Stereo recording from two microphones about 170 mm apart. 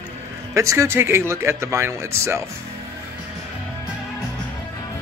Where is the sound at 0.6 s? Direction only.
15° right (ahead or behind).